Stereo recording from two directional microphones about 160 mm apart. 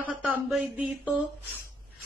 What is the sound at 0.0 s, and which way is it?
Speech, 10° right (ahead or behind).